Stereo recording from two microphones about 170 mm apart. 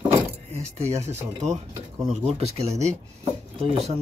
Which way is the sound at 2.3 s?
40° right (ahead or behind).